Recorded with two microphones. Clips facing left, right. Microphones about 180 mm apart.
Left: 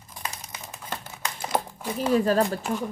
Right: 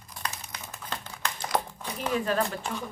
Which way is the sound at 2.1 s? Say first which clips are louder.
Left 6 dB; 35° left (ahead or behind).